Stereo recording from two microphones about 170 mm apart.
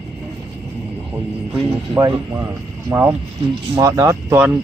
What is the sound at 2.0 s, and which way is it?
Speech, 20° right (ahead or behind).